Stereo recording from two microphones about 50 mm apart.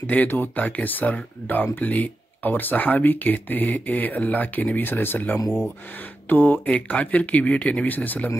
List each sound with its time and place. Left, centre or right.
0.0 s speech: left